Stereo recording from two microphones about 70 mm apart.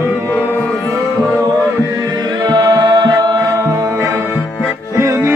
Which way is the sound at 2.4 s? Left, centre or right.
Right.